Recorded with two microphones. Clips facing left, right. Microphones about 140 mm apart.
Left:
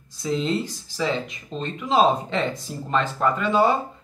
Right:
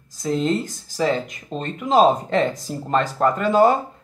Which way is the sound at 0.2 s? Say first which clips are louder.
Right 3 dB; 45° right (ahead or behind).